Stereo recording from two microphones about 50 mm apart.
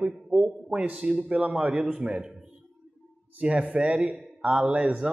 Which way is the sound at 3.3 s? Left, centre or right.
Right.